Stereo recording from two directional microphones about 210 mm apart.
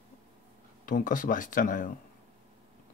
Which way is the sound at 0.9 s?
40° left (ahead or behind).